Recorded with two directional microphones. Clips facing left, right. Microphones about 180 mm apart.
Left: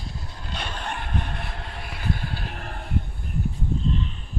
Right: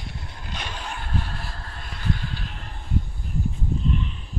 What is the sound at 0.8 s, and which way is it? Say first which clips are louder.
Vehicle: even; 60° left (ahead or behind).